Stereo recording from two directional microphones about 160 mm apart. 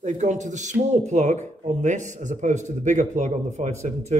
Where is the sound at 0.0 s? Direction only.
50° right (ahead or behind).